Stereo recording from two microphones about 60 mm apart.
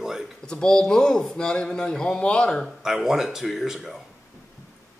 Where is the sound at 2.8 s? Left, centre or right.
Centre.